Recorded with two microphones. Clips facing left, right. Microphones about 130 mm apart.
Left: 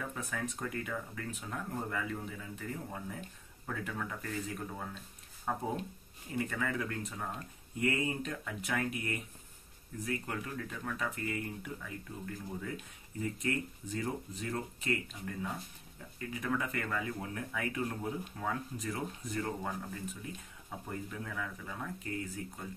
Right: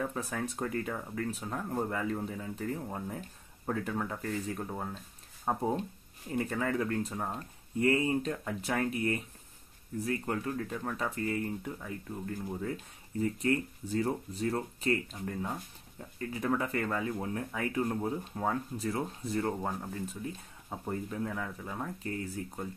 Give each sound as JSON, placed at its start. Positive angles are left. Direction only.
{"t": 0.1, "sound": "speech", "side_deg": -35}